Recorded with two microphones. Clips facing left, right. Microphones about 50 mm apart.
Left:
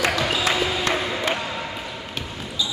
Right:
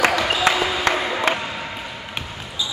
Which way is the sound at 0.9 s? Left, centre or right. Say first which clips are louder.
Right 2 dB; right.